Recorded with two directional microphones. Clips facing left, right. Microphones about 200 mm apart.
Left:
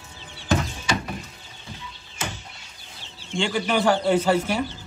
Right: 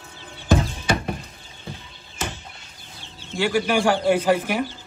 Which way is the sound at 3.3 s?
10° right (ahead or behind).